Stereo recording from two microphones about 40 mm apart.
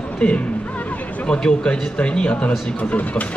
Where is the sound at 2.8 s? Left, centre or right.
Left.